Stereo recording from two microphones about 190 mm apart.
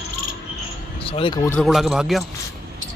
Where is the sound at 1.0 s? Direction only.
30° left (ahead or behind).